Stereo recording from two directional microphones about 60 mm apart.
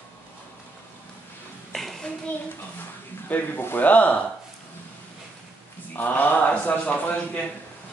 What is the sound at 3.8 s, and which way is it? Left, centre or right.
Speech, left.